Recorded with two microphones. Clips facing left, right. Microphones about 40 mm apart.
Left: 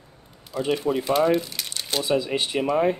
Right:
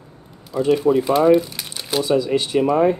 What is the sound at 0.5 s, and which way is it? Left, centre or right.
Speech, centre.